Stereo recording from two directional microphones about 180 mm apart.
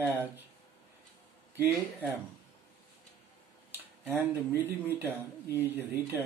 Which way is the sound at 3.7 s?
10° right (ahead or behind).